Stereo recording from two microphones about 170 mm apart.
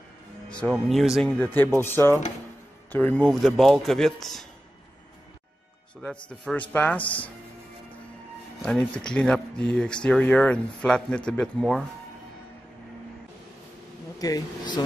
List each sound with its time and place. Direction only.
0.5 s speech: 5° left (ahead or behind)
6.2 s speech: 5° left (ahead or behind)
8.6 s speech: 5° left (ahead or behind)
14.1 s speech: 20° left (ahead or behind)